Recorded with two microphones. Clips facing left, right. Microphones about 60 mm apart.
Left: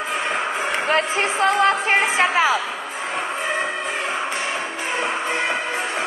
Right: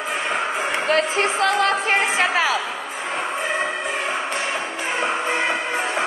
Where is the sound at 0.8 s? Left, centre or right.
Left.